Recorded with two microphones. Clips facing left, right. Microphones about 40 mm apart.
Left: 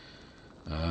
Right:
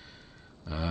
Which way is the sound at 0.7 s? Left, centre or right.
Centre.